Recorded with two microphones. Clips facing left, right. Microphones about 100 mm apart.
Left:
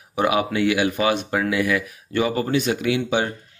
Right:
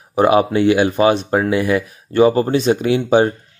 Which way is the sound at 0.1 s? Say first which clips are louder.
Right 7 dB; 35° right (ahead or behind).